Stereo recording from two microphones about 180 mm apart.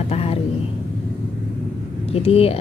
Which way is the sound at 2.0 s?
35° left (ahead or behind).